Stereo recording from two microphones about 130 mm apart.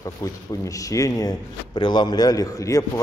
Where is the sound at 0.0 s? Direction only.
25° left (ahead or behind).